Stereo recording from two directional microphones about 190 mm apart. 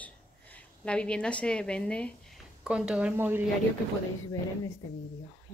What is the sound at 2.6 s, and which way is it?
Speech, 5° right (ahead or behind).